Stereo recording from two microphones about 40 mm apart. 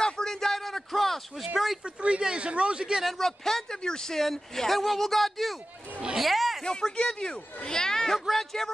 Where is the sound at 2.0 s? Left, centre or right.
Right.